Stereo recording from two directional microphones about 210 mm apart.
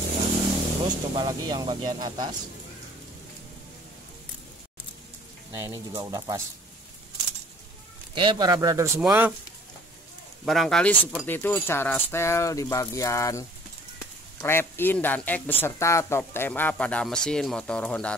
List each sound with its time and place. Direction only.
0.8 s speech: 20° right (ahead or behind)
5.5 s speech: 15° right (ahead or behind)
8.1 s speech: 25° right (ahead or behind)
10.4 s speech: centre (ahead or behind)